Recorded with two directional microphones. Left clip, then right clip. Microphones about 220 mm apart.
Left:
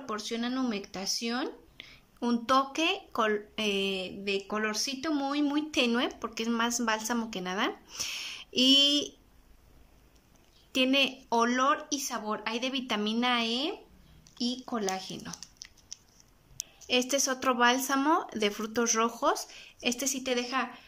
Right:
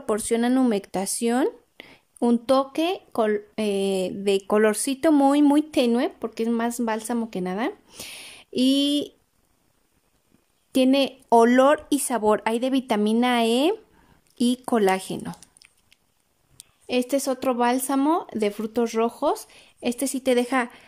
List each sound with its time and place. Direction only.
0.0 s speech: 35° right (ahead or behind)
10.7 s speech: 25° right (ahead or behind)
16.8 s speech: 20° right (ahead or behind)